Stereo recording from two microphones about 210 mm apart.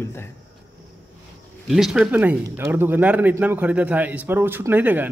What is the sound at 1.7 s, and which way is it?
Speech, centre (ahead or behind).